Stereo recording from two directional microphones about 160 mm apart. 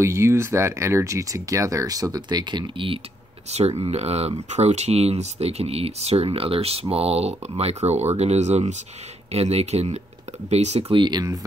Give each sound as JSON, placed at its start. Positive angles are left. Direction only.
{"t": 0.0, "sound": "speech", "side_deg": -15}